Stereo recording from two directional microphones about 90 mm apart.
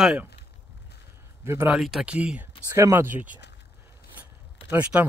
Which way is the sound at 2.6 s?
30° right (ahead or behind).